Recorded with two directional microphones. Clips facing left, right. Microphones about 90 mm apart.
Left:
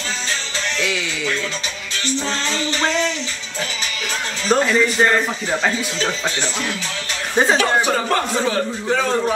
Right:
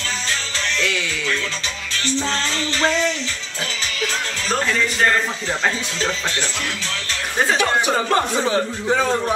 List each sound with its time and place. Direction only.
4.5 s a man's voice: 15° left (ahead or behind)
7.9 s a man's voice: 20° right (ahead or behind)